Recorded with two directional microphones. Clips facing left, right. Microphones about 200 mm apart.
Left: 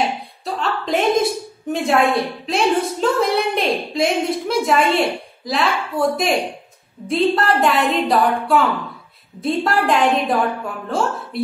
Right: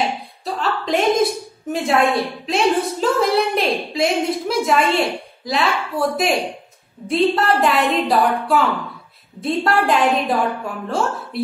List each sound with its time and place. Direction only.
0.6 s a woman's voice: centre (ahead or behind)